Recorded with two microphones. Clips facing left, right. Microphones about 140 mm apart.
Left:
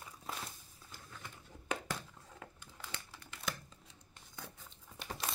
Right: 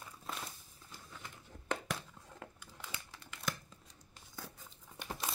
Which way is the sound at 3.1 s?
Centre (ahead or behind).